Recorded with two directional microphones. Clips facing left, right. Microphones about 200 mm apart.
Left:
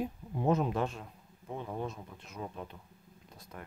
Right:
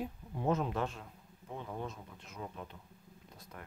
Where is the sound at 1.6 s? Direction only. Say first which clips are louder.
Left 3 dB; 25° left (ahead or behind).